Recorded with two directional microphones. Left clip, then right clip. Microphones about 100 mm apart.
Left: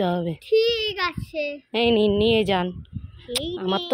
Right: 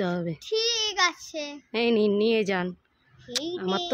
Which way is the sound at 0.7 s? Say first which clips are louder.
Even; 45° right (ahead or behind).